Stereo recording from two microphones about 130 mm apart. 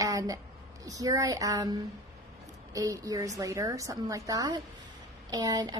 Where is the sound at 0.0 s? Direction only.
25° right (ahead or behind).